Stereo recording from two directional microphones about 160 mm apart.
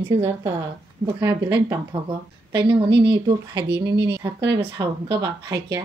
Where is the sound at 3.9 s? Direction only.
90° right.